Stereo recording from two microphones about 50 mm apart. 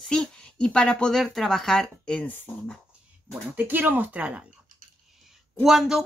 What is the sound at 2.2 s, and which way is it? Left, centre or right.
Speech, left.